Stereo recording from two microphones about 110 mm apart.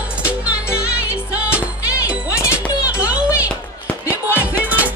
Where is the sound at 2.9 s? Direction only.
10° right (ahead or behind).